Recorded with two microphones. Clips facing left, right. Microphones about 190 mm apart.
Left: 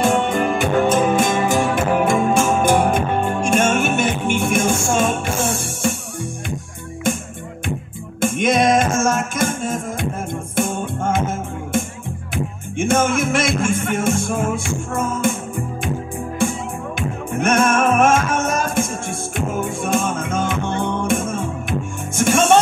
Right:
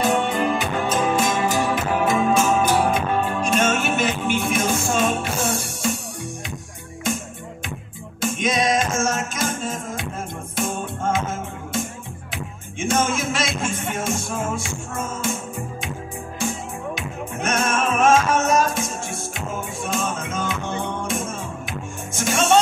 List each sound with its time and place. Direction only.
0.0 s music: 50° left (ahead or behind)
8.2 s music: 55° left (ahead or behind)
12.7 s music: 55° left (ahead or behind)
16.3 s music: 55° left (ahead or behind)